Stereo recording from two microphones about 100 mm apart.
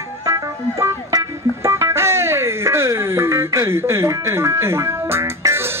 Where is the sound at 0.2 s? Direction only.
30° right (ahead or behind).